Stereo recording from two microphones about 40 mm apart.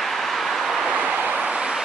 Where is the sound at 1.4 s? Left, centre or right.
Right.